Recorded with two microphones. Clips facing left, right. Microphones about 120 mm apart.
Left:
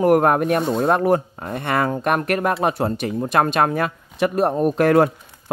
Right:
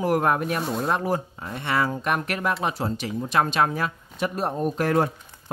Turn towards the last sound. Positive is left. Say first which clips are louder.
# left 7 dB
turn(degrees=70)  # may be behind; listen again after turning